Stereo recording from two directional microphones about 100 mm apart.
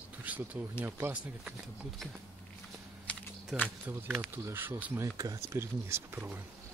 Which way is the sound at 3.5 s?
5° right (ahead or behind).